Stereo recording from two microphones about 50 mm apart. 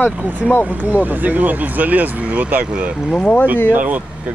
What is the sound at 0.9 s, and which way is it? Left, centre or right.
Speech, right.